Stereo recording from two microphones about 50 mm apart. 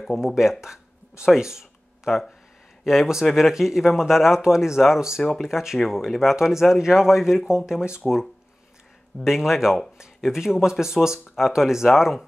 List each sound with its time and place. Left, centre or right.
0.0 s speech: centre
2.0 s speech: centre
9.2 s speech: centre